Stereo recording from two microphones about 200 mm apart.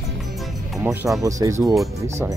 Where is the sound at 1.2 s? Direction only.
15° right (ahead or behind).